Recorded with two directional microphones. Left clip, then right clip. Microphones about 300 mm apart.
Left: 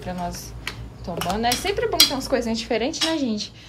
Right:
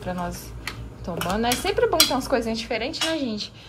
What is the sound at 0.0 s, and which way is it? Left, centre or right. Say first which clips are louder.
Speech: even; centre.